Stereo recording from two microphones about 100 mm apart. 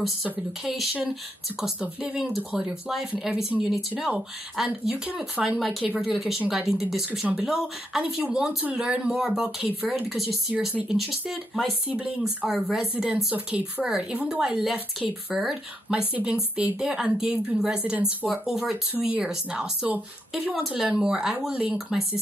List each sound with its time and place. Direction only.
0.0 s a woman's voice: 5° right (ahead or behind)
5.6 s a woman's voice: centre (ahead or behind)
11.9 s a woman's voice: 10° right (ahead or behind)